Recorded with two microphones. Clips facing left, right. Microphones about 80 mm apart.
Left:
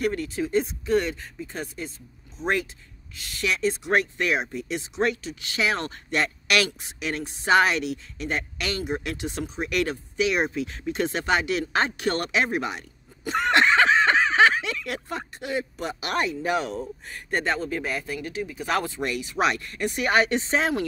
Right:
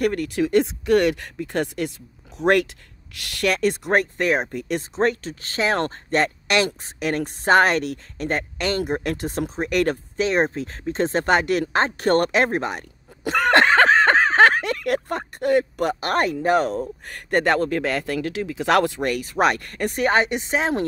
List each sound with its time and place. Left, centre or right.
0.0 s speech: right
7.0 s speech: right
13.2 s a sound: right
17.1 s speech: right
18.9 s speech: right
20.2 s speech: centre